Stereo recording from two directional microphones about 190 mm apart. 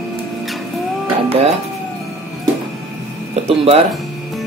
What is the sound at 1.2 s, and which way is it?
Music, 30° right (ahead or behind).